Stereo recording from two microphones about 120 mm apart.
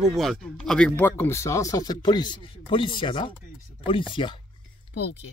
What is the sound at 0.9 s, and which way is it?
Speech, 15° left (ahead or behind).